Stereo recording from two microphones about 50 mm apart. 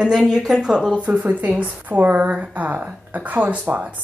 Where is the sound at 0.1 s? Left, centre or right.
Centre.